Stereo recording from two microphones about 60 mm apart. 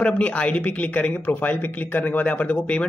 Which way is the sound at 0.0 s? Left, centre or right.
Left.